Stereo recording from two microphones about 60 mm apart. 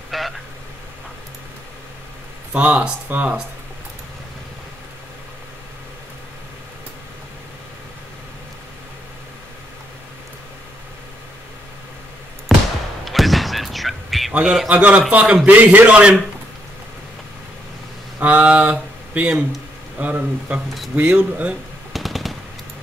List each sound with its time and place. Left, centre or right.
0.1 s vehicle: centre
2.5 s speech: right
13.0 s a sound: centre
14.4 s a man's voice: centre
14.7 s speech: right
18.2 s speech: right
21.9 s machine gun: centre